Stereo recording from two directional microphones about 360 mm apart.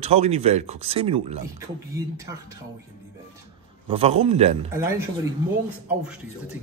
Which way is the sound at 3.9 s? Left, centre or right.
Centre.